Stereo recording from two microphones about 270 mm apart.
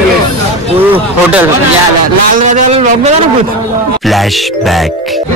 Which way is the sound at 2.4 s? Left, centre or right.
Right.